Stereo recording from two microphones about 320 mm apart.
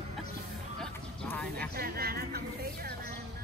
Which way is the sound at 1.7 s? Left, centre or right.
Right.